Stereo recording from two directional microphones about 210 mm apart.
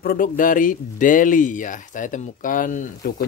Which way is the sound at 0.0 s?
45° left (ahead or behind).